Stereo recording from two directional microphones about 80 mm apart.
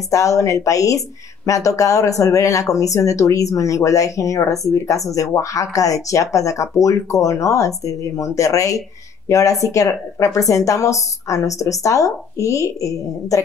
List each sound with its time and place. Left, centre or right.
0.1 s speech: left